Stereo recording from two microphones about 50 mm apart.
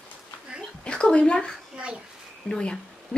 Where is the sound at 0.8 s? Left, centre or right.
Left.